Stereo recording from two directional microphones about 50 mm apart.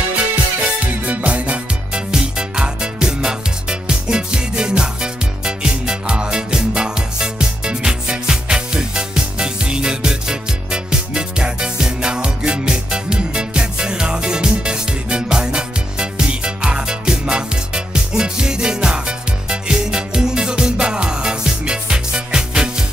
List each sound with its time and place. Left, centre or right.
0.7 s music: right
2.0 s music: centre